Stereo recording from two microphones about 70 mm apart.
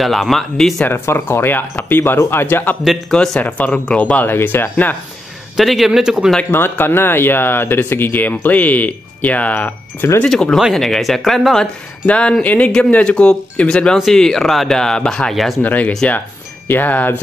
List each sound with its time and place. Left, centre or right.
0.0 s speech: centre
0.8 s speech: left
4.3 s speech: left
5.6 s speech: centre
6.5 s speech: left
10.3 s speech: centre
12.1 s speech: centre
13.9 s speech: centre
15.6 s speech: left